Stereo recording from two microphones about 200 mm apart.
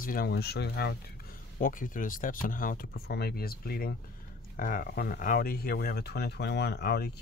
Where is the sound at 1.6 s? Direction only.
45° left (ahead or behind).